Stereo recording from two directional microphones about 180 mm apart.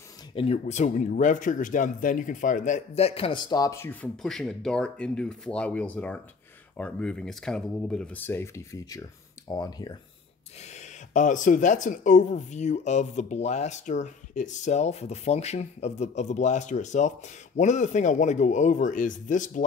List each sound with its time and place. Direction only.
0.3 s speech: 30° left (ahead or behind)
10.6 s speech: 40° left (ahead or behind)